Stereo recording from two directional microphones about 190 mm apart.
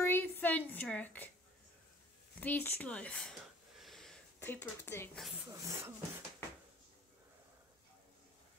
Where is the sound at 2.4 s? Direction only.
10° left (ahead or behind).